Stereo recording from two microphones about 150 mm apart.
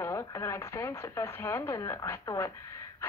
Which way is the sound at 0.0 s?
15° left (ahead or behind).